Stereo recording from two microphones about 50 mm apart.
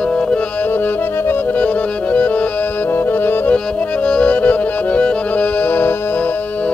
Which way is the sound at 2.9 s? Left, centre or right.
Left.